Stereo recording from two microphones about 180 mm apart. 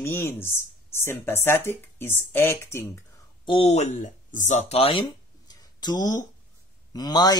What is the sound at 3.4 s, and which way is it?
Speech, 30° left (ahead or behind).